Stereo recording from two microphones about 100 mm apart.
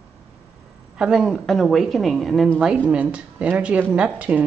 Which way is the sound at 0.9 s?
5° right (ahead or behind).